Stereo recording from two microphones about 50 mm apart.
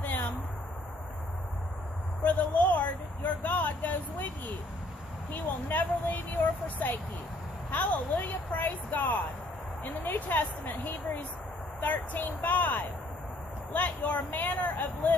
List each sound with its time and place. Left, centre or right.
0.0 s a sound: left
2.2 s vehicle: left
5.3 s speech: left